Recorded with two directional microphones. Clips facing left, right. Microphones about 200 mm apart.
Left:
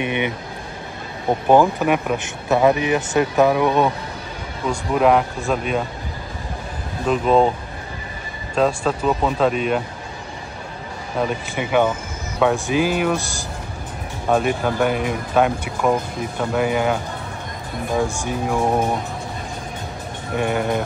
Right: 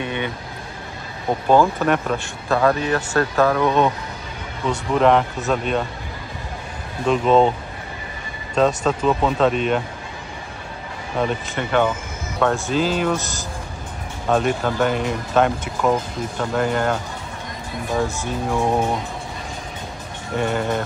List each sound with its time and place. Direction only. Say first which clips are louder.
0.0 s speech: left 3 dB; 15° left (ahead or behind)
1.5 s speech: left 1 dB; 15° left (ahead or behind)
7.1 s speech: right 1 dB; 5° left (ahead or behind)
8.5 s speech: right 1 dB; 5° left (ahead or behind)
11.1 s speech: even; 5° left (ahead or behind)
18.0 s speech: left 1 dB; 15° left (ahead or behind)
20.3 s speech: left 1 dB; 5° left (ahead or behind)